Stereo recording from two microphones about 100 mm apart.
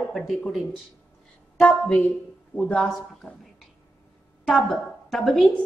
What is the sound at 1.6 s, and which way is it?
Speech, 10° left (ahead or behind).